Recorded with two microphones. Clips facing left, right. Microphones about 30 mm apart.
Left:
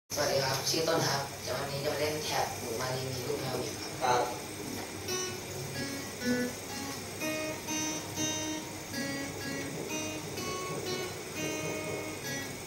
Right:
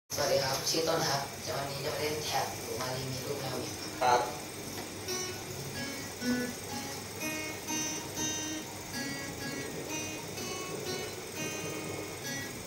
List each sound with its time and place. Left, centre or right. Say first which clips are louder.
0.1 s speech: even; centre
4.0 s speech: right 2 dB; right
5.8 s music: left 1 dB; centre